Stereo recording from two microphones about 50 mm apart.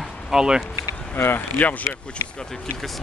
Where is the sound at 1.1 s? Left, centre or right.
Left.